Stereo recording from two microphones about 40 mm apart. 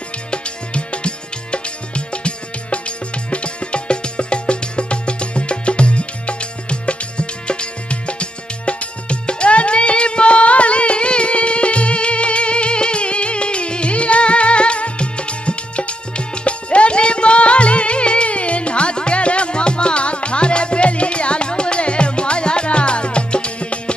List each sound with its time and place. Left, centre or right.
0.3 s music: left